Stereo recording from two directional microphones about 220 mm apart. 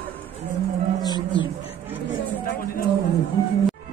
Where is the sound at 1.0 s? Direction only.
20° left (ahead or behind).